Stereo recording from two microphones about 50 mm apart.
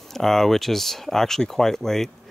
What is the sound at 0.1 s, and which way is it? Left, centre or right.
Speech, centre.